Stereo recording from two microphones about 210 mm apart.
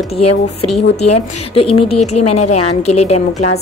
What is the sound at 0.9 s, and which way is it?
A woman's voice, 30° left (ahead or behind).